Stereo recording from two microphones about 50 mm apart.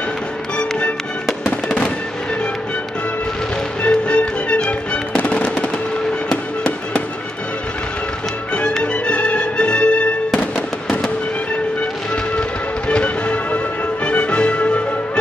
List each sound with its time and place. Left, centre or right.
0.6 s music: left
1.4 s fireworks: left
3.8 s music: left
8.8 s music: left
12.4 s music: left